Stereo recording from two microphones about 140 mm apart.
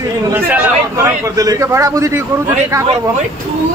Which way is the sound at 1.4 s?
25° right (ahead or behind).